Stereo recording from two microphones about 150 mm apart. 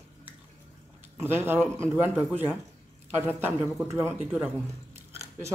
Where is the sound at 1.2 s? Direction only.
15° right (ahead or behind).